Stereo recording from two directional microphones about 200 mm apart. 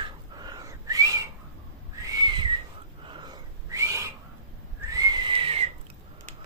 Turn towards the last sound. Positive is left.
turn(degrees=-30)  # may be behind; listen again after turning